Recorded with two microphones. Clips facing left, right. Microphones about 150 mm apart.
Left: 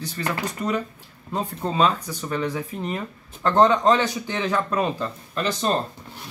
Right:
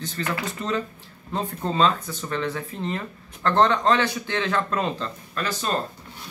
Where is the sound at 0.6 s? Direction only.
15° left (ahead or behind).